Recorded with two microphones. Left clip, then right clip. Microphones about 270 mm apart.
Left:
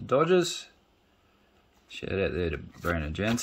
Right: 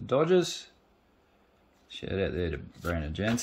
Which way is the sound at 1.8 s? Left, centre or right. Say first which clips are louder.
Left 2 dB; centre.